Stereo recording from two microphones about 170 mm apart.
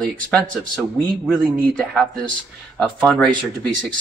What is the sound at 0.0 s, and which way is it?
Speech, 5° left (ahead or behind).